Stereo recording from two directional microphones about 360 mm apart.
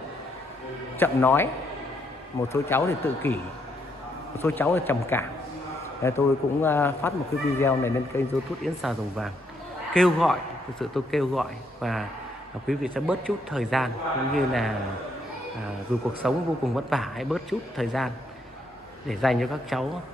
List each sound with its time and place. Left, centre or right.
0.9 s a man's voice: centre
2.5 s a man's voice: centre
4.4 s a man's voice: centre
16.2 s a man's voice: centre